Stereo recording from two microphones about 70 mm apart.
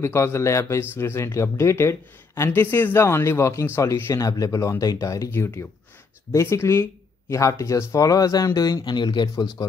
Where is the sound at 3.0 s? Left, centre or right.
Left.